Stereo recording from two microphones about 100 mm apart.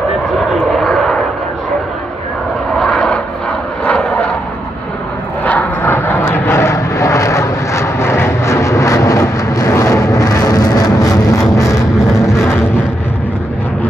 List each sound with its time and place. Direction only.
0.5 s aircraft: centre (ahead or behind)
2.8 s vehicle: 5° left (ahead or behind)
5.4 s vehicle: 15° left (ahead or behind); by 11.8 s 35° left (ahead or behind)
12.3 s vehicle: 25° left (ahead or behind)